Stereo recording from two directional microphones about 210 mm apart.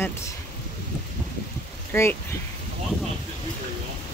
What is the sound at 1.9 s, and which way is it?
Speech, 10° left (ahead or behind).